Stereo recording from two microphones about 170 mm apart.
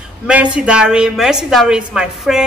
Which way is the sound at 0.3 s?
5° right (ahead or behind).